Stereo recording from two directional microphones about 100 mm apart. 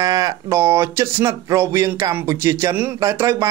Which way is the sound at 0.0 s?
35° right (ahead or behind).